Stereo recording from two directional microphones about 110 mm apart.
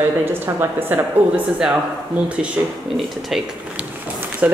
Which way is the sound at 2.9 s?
Centre (ahead or behind).